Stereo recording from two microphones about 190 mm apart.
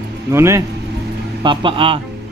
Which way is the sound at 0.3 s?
15° right (ahead or behind).